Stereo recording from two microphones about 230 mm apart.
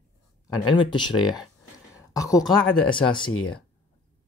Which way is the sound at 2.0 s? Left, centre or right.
Centre.